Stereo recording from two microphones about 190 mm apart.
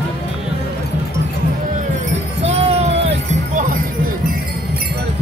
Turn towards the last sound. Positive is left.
turn(degrees=-40)  # may be behind; listen again after turning